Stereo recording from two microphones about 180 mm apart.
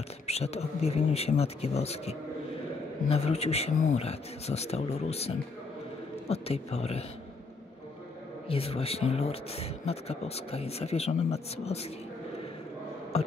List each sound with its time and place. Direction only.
0.3 s speech: 35° left (ahead or behind)
8.5 s speech: 35° left (ahead or behind)
13.1 s a sound: 35° left (ahead or behind)